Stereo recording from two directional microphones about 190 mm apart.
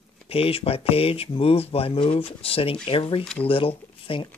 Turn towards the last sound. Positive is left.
turn(degrees=30)  # may be behind; listen again after turning